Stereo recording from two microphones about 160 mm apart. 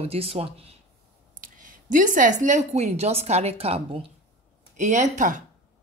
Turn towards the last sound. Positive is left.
turn(degrees=-50)  # may be behind; listen again after turning